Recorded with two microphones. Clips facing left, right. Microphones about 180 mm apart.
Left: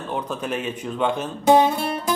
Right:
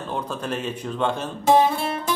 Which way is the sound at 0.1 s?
10° left (ahead or behind).